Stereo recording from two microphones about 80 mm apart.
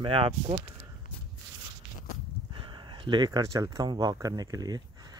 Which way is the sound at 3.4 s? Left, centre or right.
Right.